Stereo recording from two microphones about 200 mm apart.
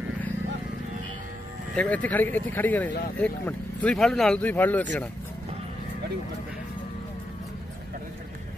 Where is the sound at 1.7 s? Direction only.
5° left (ahead or behind).